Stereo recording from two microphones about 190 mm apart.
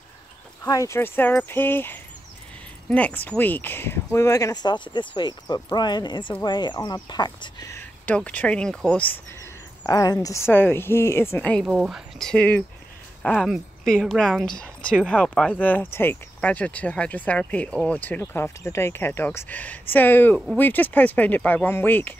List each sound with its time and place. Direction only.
0.7 s speech: 15° left (ahead or behind)
7.7 s speech: 10° left (ahead or behind)
11.6 s a woman's voice: 5° right (ahead or behind); by 22.1 s 10° left (ahead or behind)